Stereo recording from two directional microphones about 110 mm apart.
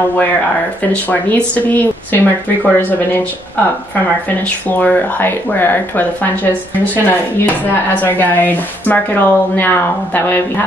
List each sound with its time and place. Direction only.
1.7 s speech: 15° left (ahead or behind)
4.6 s speech: 15° left (ahead or behind)